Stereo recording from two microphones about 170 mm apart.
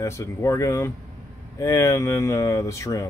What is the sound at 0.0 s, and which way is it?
Speech, 15° left (ahead or behind).